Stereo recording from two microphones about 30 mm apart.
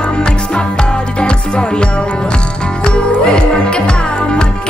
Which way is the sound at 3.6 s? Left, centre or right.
Left.